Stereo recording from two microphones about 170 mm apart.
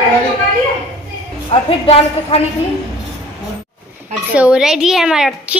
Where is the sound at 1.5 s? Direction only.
35° left (ahead or behind).